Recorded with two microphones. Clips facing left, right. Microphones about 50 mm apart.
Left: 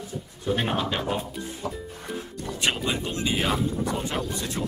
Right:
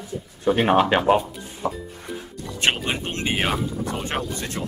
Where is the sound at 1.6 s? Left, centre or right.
Right.